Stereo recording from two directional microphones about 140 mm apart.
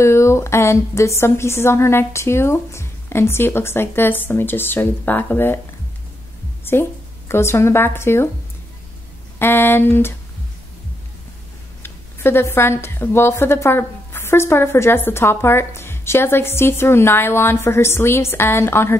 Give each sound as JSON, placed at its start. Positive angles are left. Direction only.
{"t": 0.0, "sound": "speech", "side_deg": 20}
{"t": 6.6, "sound": "speech", "side_deg": 15}
{"t": 9.4, "sound": "speech", "side_deg": 15}
{"t": 11.8, "sound": "speech", "side_deg": 15}